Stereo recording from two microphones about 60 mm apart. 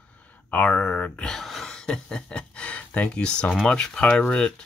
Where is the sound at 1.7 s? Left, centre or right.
Centre.